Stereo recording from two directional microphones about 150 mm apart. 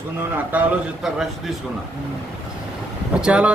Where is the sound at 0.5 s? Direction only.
5° right (ahead or behind).